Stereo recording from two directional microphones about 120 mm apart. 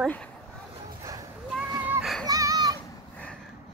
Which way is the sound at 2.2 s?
30° right (ahead or behind).